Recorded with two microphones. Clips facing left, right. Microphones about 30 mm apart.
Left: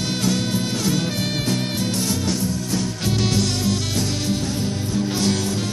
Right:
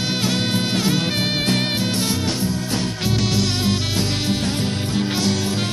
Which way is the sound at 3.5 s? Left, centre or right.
Right.